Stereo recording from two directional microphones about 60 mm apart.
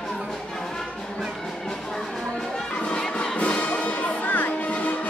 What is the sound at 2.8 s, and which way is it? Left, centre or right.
Music, centre.